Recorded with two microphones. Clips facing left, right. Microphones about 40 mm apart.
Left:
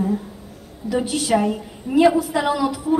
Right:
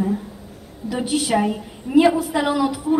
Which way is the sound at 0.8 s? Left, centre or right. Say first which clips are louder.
Left 1 dB; centre.